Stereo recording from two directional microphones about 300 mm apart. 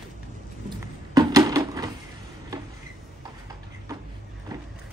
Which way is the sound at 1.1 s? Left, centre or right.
Centre.